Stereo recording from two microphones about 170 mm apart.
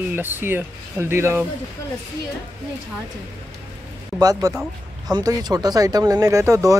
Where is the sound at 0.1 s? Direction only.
10° right (ahead or behind).